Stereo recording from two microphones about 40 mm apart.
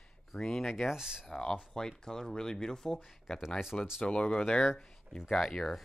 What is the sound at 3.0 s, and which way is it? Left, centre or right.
Speech, centre.